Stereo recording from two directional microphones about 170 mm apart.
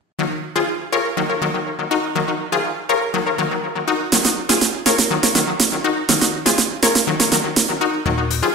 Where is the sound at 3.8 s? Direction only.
Centre (ahead or behind).